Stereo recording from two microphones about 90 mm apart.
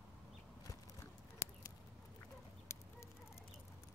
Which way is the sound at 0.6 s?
40° left (ahead or behind).